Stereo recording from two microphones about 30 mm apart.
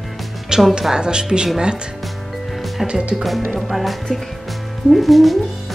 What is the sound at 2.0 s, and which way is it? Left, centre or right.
Music, centre.